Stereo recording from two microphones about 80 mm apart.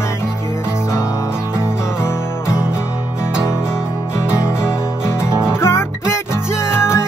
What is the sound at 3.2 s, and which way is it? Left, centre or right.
Music, centre.